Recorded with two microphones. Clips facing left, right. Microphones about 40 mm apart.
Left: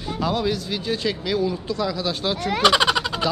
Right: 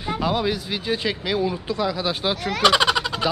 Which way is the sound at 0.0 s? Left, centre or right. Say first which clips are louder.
Right 1 dB; centre.